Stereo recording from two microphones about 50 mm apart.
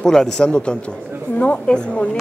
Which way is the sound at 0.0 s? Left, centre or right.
Centre.